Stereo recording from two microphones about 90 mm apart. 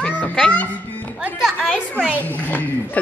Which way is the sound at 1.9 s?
20° left (ahead or behind).